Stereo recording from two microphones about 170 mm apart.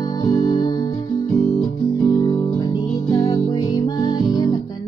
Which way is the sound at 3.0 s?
25° left (ahead or behind).